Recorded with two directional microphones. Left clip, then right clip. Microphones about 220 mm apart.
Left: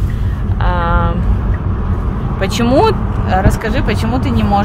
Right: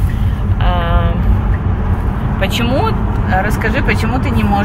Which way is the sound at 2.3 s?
25° left (ahead or behind).